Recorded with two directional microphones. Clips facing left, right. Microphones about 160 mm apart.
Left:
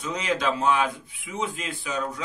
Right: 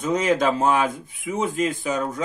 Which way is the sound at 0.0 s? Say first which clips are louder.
Right 6 dB; 45° right (ahead or behind).